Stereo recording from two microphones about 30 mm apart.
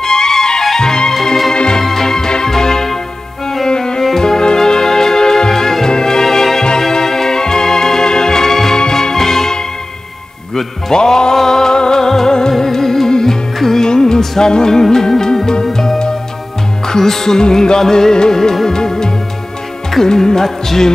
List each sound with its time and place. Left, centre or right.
0.0 s music: left
1.8 s music: centre
6.8 s organ: centre
8.7 s music: left